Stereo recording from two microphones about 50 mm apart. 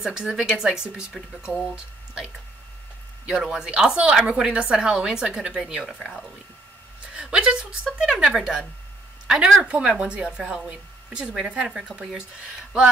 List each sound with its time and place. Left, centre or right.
0.0 s a woman's voice: centre
3.3 s a woman's voice: centre
7.2 s a woman's voice: centre
9.6 s speech: right